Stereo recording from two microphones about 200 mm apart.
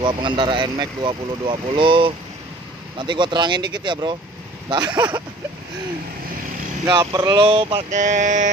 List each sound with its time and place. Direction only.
0.0 s speech: 25° right (ahead or behind)
6.9 s speech: 20° right (ahead or behind)
7.9 s a sound: 40° right (ahead or behind)